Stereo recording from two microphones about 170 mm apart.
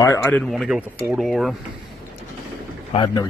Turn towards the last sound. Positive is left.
turn(degrees=30)  # may be behind; listen again after turning